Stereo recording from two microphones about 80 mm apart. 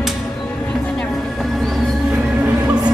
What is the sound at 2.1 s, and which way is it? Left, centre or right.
Music, right.